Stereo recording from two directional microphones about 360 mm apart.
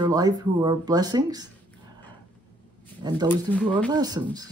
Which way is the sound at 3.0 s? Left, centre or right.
Centre.